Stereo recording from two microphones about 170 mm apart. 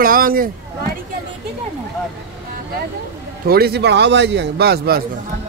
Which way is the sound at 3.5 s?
65° right (ahead or behind).